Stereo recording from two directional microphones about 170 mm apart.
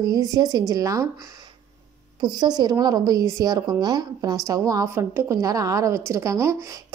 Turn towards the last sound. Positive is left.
turn(degrees=-20)  # may be behind; listen again after turning